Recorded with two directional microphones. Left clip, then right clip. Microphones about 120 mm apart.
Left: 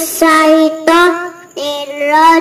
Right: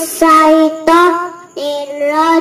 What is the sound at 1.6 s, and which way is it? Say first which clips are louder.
Child singing: even; centre (ahead or behind).